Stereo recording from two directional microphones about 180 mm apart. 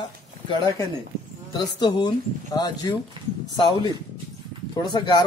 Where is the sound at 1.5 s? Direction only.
25° left (ahead or behind).